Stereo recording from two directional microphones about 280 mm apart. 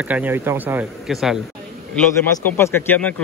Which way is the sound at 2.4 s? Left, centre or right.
Centre.